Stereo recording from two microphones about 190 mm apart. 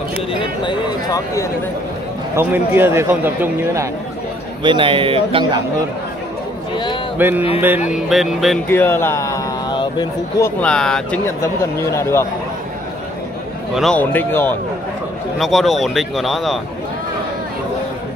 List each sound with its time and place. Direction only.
0.4 s speech: 25° left (ahead or behind)
2.3 s a man's voice: 10° right (ahead or behind)
4.6 s speech: 25° right (ahead or behind)
7.2 s a man's voice: 10° right (ahead or behind)
8.6 s a man's voice: 10° left (ahead or behind)
10.6 s speech: 5° left (ahead or behind)
11.2 s speech: 15° left (ahead or behind)
13.7 s speech: 5° left (ahead or behind)
15.3 s speech: centre (ahead or behind)